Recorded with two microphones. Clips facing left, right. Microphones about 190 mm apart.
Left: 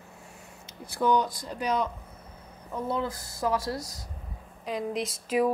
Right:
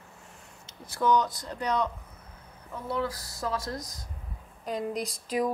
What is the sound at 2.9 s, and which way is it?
Speech, 20° left (ahead or behind).